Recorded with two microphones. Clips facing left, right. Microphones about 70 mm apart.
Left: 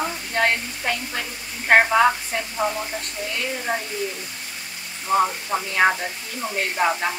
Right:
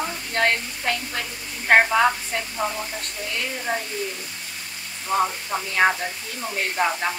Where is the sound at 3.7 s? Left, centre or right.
Centre.